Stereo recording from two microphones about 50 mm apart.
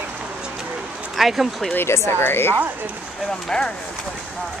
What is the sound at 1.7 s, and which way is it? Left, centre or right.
Speech, left.